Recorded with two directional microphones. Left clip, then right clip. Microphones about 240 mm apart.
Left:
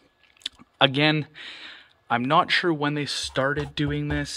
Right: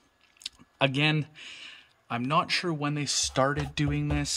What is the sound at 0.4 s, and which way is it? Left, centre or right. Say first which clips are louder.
Speech: left 6 dB; centre.